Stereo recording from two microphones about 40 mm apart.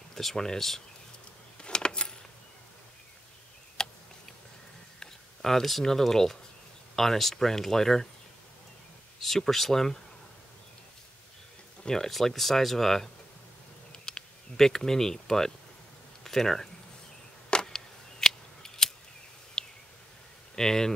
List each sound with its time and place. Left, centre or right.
0.1 s speech: centre
1.6 s a sound: left
3.8 s a sound: centre
5.0 s speech: centre
9.2 s speech: centre
12.1 s speech: centre
14.1 s insect: centre
14.6 s speech: centre
17.5 s scissors: centre
19.6 s a sound: centre
20.5 s speech: centre